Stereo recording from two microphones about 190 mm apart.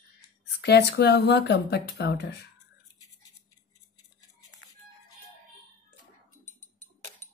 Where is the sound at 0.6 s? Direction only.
60° left (ahead or behind).